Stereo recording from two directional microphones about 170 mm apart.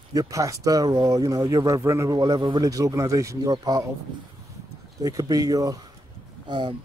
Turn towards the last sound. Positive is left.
turn(degrees=-30)  # may be behind; listen again after turning